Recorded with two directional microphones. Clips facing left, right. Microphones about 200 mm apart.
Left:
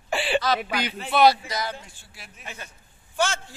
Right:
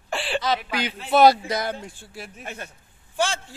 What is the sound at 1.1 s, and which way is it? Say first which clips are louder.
A man's voice: right 3 dB; 50° right (ahead or behind).